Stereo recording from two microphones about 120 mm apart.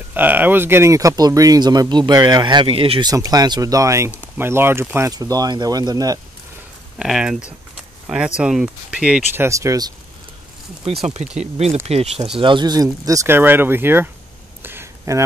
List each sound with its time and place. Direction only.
0.1 s speech: 15° right (ahead or behind); by 3.1 s 50° right (ahead or behind)
3.1 s speech: 30° right (ahead or behind)
5.1 s speech: 30° right (ahead or behind)
7.0 s speech: 5° right (ahead or behind)
9.3 s speech: 20° right (ahead or behind)
11.1 s speech: 65° right (ahead or behind)
12.4 s speech: 40° right (ahead or behind)
13.4 s speech: 15° right (ahead or behind)
14.6 s a sound: 20° right (ahead or behind)